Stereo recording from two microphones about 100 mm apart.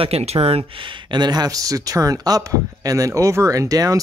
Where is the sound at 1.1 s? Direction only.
45° right (ahead or behind).